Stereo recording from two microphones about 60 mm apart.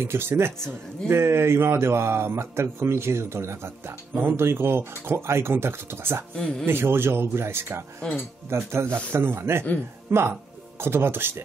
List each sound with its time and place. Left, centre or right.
0.0 s speech: right
6.3 s speech: centre
6.6 s speech: right